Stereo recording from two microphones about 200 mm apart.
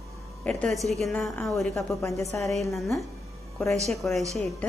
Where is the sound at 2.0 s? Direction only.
15° left (ahead or behind).